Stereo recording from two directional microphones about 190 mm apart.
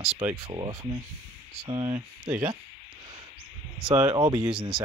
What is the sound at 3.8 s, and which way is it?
Speech, 20° right (ahead or behind).